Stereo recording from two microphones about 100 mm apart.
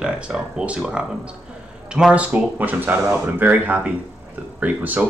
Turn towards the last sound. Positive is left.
turn(degrees=-15)  # may be behind; listen again after turning